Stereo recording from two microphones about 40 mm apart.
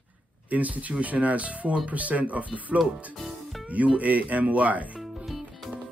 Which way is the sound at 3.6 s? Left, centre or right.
Right.